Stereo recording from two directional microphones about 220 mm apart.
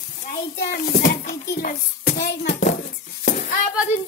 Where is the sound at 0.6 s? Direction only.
40° left (ahead or behind).